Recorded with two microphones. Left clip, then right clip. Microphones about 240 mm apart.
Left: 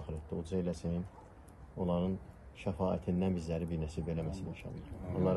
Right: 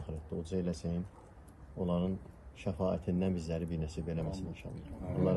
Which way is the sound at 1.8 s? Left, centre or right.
Centre.